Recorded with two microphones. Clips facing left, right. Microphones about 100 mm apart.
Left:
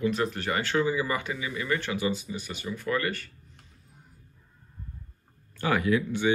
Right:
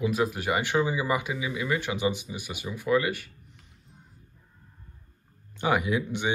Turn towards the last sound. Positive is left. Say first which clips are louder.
# left 3 dB
turn(degrees=-20)  # may be behind; listen again after turning